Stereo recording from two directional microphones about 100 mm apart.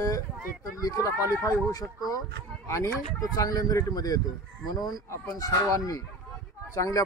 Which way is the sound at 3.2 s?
35° left (ahead or behind).